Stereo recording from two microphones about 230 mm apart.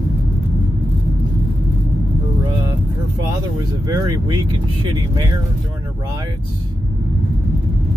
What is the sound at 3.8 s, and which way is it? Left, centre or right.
Speech, centre.